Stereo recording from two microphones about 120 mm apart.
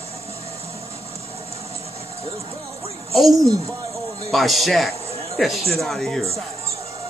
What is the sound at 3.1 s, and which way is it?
Speech, centre (ahead or behind).